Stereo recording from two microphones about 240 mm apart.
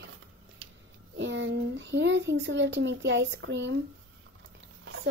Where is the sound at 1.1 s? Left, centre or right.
Right.